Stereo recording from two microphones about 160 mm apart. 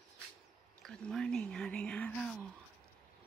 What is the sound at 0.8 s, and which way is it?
Speech, 5° left (ahead or behind).